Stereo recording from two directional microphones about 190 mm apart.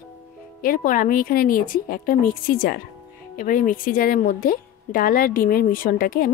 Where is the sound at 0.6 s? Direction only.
45° left (ahead or behind).